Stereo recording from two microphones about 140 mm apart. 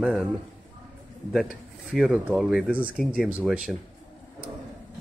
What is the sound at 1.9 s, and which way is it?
Speech, 5° right (ahead or behind).